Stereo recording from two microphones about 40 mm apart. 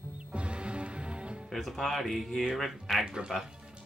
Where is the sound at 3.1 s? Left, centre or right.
Centre.